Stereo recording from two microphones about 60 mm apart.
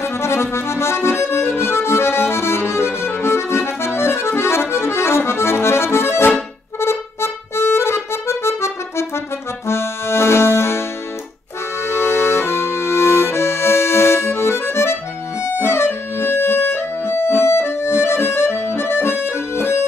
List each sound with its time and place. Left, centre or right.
0.0 s accordion: left